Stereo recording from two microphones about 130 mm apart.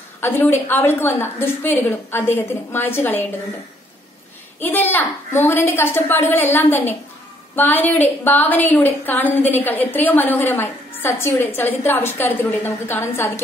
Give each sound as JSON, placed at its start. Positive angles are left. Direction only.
{"t": 0.2, "sound": "a woman's voice", "side_deg": 15}
{"t": 4.6, "sound": "a woman's voice", "side_deg": 15}